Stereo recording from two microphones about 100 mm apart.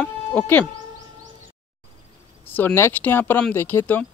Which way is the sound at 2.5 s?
20° left (ahead or behind).